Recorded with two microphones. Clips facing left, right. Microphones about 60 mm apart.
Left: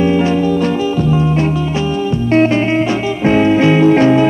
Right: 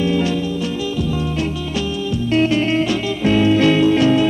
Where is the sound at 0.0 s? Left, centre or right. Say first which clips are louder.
Left 5 dB; left.